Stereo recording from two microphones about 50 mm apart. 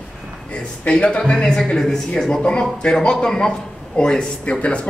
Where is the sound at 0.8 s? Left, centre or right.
Left.